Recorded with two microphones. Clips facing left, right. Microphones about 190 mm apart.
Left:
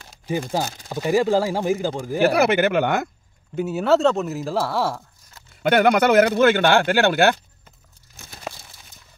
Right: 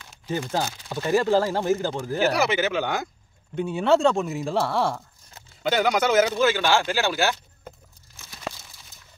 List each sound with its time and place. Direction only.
0.8 s speech: 15° left (ahead or behind)
2.3 s speech: 55° left (ahead or behind)
3.5 s speech: 5° left (ahead or behind)
5.6 s speech: 60° left (ahead or behind)